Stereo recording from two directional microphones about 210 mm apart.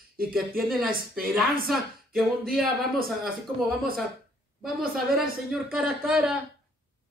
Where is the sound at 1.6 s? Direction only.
Centre (ahead or behind).